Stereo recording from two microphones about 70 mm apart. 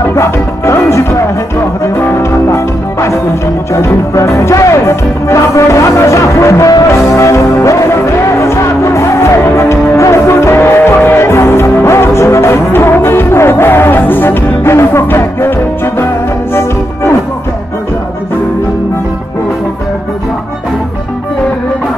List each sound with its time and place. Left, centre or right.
0.1 s music: left
2.5 s music: left